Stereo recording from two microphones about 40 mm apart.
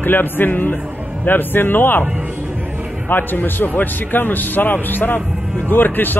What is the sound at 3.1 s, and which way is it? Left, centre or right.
A man's voice, left.